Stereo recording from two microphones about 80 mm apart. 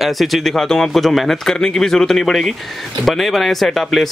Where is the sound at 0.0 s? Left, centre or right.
Centre.